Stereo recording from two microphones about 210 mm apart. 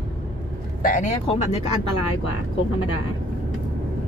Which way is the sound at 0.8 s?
40° left (ahead or behind).